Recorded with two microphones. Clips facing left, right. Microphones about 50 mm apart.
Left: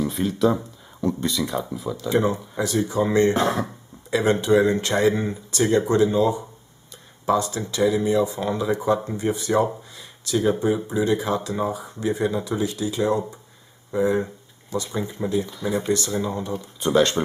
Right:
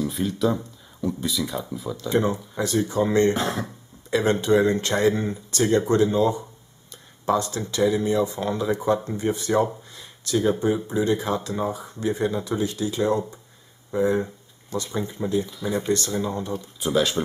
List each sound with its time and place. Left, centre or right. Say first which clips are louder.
0.0 s speech: left 3 dB; centre